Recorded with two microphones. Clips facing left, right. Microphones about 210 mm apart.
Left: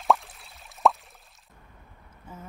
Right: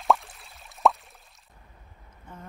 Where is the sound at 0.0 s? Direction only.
Centre (ahead or behind).